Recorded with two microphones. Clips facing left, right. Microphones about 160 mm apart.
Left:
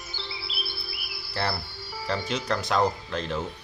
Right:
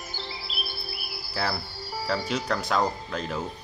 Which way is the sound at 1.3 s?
10° right (ahead or behind).